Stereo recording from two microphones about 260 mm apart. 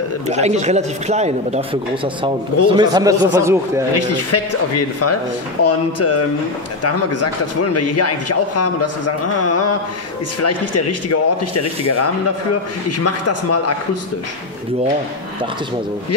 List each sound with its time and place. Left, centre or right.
0.3 s a man's voice: right
4.1 s a man's voice: left